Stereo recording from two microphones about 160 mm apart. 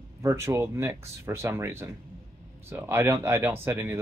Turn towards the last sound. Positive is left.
turn(degrees=-15)  # may be behind; listen again after turning